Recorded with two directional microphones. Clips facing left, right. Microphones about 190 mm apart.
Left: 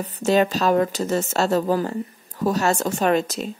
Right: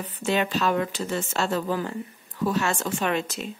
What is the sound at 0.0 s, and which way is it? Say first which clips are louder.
A woman's voice: left 6 dB; 40° left (ahead or behind).